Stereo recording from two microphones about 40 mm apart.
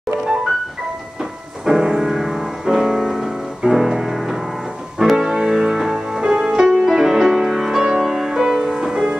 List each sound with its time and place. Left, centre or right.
1.7 s music: centre